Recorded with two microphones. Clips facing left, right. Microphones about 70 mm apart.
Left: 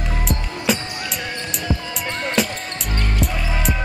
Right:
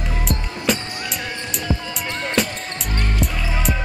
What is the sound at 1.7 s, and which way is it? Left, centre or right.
Music, centre.